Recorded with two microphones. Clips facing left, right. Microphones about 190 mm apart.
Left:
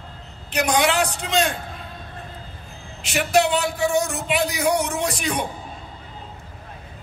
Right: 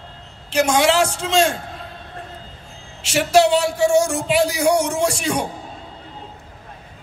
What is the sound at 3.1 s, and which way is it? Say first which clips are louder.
Speech: right 4 dB; 30° right (ahead or behind).